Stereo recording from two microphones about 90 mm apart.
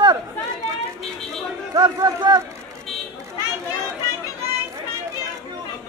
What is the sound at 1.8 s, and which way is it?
Speech, 50° right (ahead or behind).